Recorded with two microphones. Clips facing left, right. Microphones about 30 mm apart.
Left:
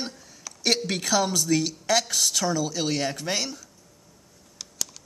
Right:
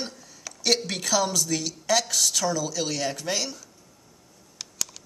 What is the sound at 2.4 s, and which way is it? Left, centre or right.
Speech, left.